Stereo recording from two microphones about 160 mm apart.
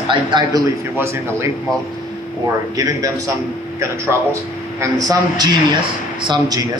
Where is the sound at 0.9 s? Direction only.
15° right (ahead or behind).